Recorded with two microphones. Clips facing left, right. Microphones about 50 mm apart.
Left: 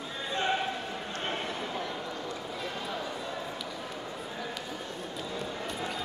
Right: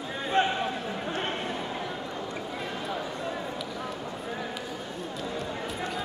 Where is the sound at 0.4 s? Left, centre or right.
Right.